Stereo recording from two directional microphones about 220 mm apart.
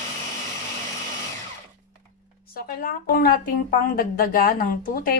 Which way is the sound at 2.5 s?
40° left (ahead or behind).